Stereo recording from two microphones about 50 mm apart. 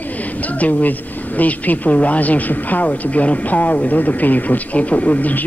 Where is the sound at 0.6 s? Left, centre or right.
Left.